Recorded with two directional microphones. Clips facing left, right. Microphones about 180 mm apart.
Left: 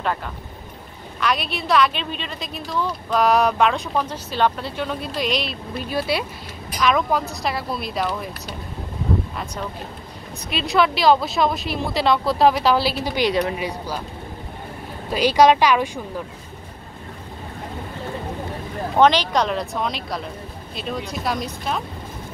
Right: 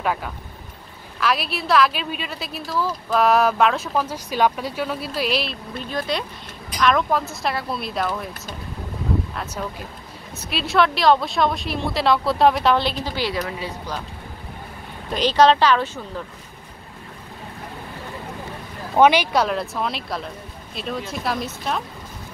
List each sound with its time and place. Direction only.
0.0 s a woman's voice: 5° right (ahead or behind)
5.9 s a woman's voice: 10° left (ahead or behind)
10.5 s a woman's voice: centre (ahead or behind)
13.1 s speech: 20° left (ahead or behind)
15.0 s speech: 10° left (ahead or behind)
18.9 s a woman's voice: 10° right (ahead or behind)